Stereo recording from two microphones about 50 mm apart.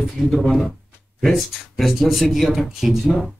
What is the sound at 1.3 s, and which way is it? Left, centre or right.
A man's voice, centre.